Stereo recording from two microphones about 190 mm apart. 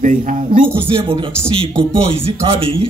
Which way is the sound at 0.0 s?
45° right (ahead or behind).